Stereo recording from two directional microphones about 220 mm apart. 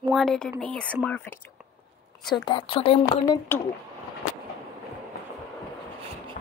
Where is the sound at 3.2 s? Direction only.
15° left (ahead or behind).